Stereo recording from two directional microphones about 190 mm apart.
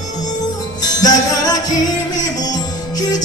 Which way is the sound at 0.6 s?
20° left (ahead or behind).